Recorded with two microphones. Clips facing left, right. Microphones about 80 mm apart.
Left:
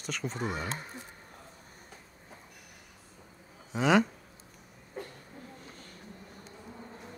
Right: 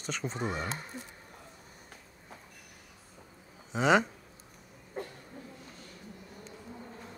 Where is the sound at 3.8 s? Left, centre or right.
Centre.